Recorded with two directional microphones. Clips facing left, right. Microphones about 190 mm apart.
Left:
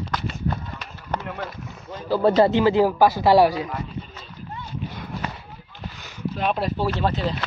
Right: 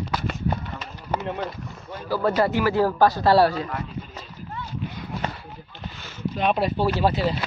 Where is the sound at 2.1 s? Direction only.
25° left (ahead or behind).